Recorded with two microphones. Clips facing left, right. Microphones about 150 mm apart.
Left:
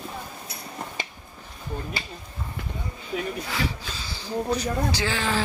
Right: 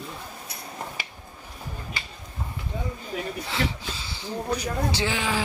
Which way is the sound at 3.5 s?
25° right (ahead or behind).